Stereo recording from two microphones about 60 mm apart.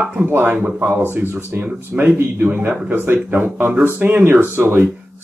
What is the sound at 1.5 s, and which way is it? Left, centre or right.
Speech, right.